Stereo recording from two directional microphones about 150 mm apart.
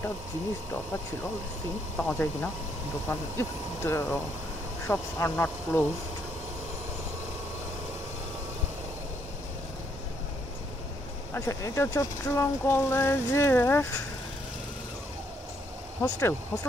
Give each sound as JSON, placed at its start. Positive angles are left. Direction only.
{"t": 2.0, "sound": "speech", "side_deg": 10}
{"t": 11.3, "sound": "speech", "side_deg": 20}
{"t": 16.0, "sound": "speech", "side_deg": 15}